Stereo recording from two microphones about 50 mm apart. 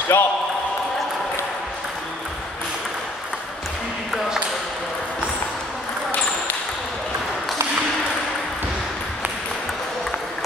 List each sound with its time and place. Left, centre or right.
0.1 s speech: left